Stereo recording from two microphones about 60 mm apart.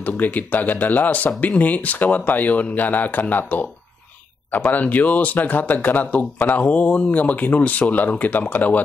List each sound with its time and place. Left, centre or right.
0.0 s speech: left